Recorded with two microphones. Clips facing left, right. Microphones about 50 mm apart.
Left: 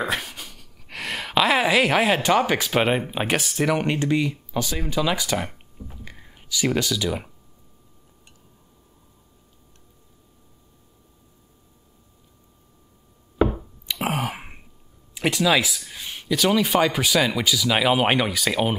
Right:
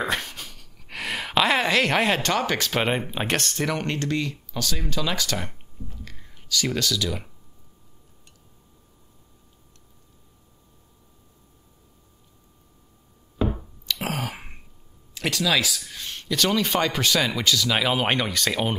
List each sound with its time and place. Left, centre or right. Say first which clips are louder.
0.0 s speech: even; centre
13.8 s a sound: left 3 dB; left
14.4 s throat clearing: left 2 dB; centre
15.1 s speech: left 3 dB; centre